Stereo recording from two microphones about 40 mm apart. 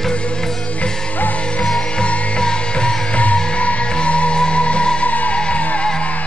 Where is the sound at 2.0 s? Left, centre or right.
Left.